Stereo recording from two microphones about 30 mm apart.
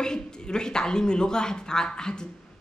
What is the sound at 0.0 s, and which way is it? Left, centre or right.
A woman's voice, left.